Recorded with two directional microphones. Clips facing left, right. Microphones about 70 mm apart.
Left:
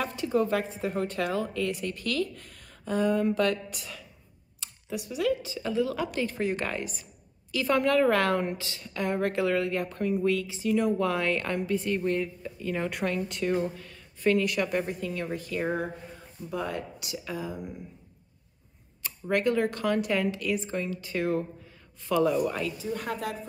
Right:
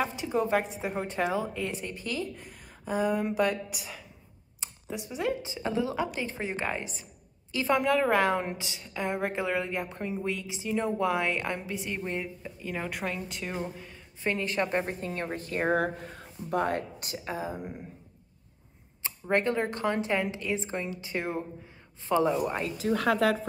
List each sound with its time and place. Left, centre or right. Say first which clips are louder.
0.0 s a woman's voice: left 2 dB; centre
2.3 s a woman's voice: right 2 dB; centre
4.6 s a woman's voice: left 2 dB; right
14.3 s a woman's voice: left 1 dB; right
15.7 s speech: right 4 dB; right
19.0 s speech: left 1 dB; right
22.8 s speech: right 7 dB; right